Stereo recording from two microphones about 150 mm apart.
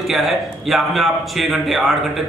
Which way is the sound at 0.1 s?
Centre (ahead or behind).